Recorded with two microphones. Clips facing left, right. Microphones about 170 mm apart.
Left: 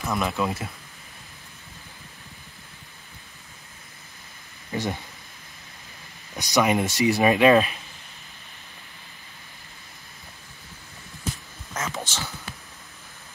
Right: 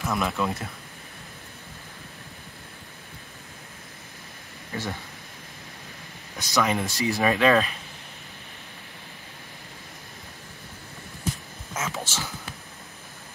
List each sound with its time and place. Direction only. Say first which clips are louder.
0.0 s speech: left 1 dB; centre (ahead or behind)
6.3 s speech: left 3 dB; 15° left (ahead or behind)
11.7 s a sound: even; 5° right (ahead or behind)